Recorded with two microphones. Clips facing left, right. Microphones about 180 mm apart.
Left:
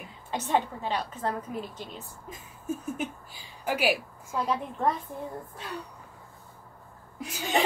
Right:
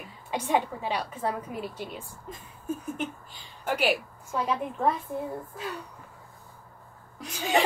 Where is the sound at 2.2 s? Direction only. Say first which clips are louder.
Even; 5° left (ahead or behind).